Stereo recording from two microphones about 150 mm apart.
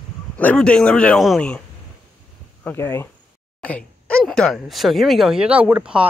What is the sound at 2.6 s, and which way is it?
Speech, 15° left (ahead or behind).